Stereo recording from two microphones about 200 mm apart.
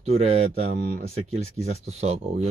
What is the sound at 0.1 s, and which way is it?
Speech, 30° right (ahead or behind).